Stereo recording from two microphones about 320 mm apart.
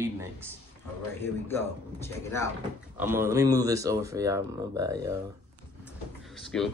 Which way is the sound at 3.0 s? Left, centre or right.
Centre.